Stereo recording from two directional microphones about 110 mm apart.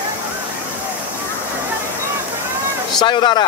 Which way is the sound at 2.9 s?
45° left (ahead or behind).